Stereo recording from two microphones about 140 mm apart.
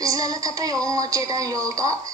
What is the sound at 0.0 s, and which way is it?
A woman's voice, 25° right (ahead or behind).